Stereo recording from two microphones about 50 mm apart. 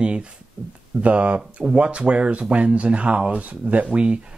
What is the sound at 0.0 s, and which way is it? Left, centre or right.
Speech, centre.